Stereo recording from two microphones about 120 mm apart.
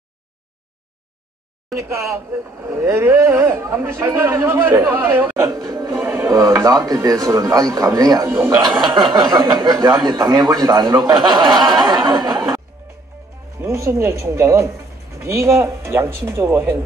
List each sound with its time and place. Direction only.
1.8 s speech: 25° right (ahead or behind)
8.3 s a man's voice: 15° right (ahead or behind)
8.6 s speech: 40° right (ahead or behind)
13.7 s speech: 25° right (ahead or behind)